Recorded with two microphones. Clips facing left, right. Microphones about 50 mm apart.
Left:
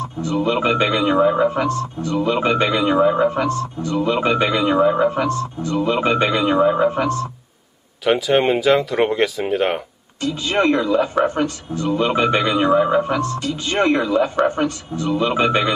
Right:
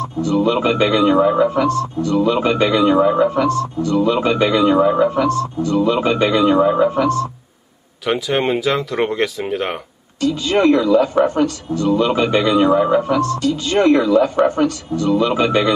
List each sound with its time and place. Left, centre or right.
0.0 s speech: left
8.0 s speech: centre
10.2 s speech: left